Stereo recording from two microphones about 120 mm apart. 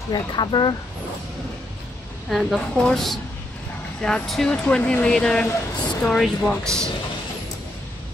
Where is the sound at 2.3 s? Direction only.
Centre (ahead or behind).